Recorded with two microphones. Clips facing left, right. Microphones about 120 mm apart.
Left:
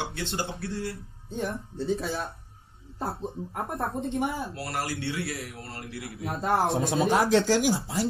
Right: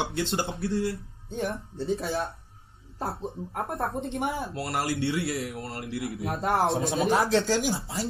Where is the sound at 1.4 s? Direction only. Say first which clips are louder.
Even; centre (ahead or behind).